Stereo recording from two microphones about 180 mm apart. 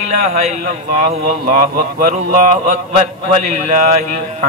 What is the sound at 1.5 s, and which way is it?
A man's voice, 50° right (ahead or behind).